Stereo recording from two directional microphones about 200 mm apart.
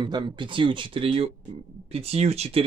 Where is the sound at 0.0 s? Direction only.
25° right (ahead or behind).